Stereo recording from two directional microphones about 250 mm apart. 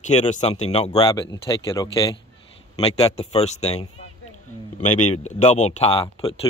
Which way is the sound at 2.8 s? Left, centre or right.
Left.